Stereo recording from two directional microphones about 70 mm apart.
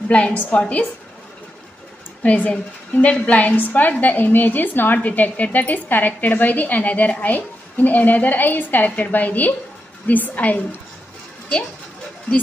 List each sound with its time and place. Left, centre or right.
0.1 s a woman's voice: centre
2.2 s a woman's voice: left